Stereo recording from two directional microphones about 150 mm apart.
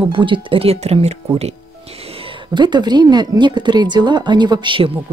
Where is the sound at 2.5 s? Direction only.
30° right (ahead or behind).